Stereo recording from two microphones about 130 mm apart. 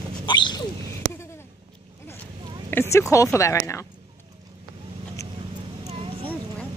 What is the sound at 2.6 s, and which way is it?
Speech, 20° left (ahead or behind).